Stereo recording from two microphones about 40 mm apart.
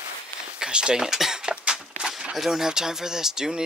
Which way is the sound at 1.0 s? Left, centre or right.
Centre.